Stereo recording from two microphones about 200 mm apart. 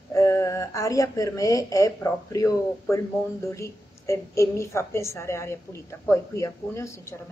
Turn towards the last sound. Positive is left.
turn(degrees=15)  # may be behind; listen again after turning